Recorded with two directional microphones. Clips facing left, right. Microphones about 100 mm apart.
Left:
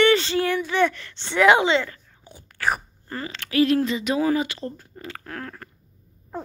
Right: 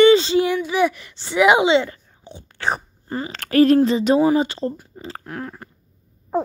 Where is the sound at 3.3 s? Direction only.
45° right (ahead or behind).